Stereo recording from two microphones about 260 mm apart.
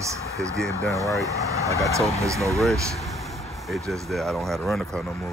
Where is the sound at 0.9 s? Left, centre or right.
Centre.